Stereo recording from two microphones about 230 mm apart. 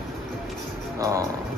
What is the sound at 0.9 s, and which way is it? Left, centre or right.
Speech, centre.